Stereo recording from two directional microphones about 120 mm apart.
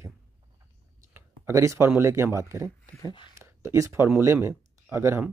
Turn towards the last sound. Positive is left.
turn(degrees=-20)  # may be behind; listen again after turning